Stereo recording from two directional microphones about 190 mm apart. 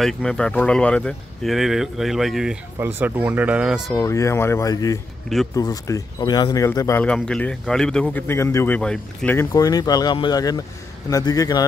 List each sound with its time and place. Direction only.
0.0 s speech: 5° left (ahead or behind)
4.0 s a man's voice: 15° left (ahead or behind)